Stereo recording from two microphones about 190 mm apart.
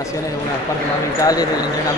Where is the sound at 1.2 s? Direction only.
20° left (ahead or behind).